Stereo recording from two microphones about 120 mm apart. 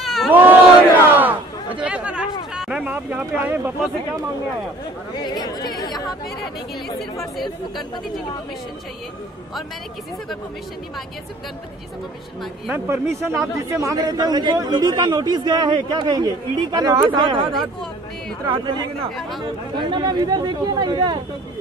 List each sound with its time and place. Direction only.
0.0 s crowd: centre (ahead or behind)
0.3 s battle cry: 15° right (ahead or behind)
1.8 s chatter: 10° right (ahead or behind)
2.5 s speech: 5° right (ahead or behind)
5.1 s speech: 35° left (ahead or behind)
7.3 s speech: centre (ahead or behind)
12.7 s speech: 20° right (ahead or behind); by 17.6 s 40° right (ahead or behind)
19.9 s speech: 35° right (ahead or behind)